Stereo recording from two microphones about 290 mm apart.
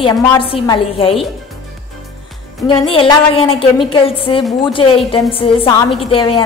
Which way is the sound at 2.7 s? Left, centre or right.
Centre.